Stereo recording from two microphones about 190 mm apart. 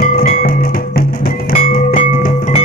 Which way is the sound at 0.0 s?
50° left (ahead or behind).